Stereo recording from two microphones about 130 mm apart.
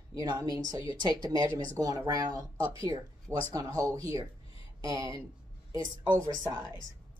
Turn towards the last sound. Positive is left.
turn(degrees=-25)  # may be behind; listen again after turning